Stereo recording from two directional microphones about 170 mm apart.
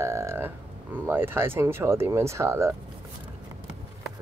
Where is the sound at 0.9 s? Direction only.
10° right (ahead or behind).